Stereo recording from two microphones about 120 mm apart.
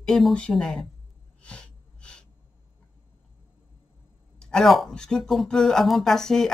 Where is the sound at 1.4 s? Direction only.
10° left (ahead or behind).